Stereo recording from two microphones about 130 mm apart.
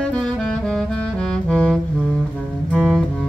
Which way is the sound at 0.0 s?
5° left (ahead or behind).